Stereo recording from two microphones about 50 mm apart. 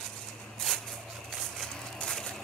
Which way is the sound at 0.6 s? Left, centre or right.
Centre.